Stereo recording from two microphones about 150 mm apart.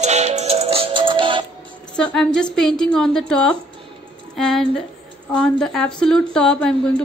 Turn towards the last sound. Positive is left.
turn(degrees=5)  # may be behind; listen again after turning